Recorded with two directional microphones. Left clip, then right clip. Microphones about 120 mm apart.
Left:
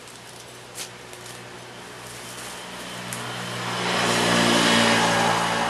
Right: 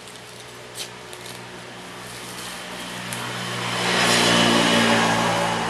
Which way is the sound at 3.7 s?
20° right (ahead or behind).